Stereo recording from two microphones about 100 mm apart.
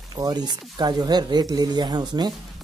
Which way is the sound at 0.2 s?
45° right (ahead or behind).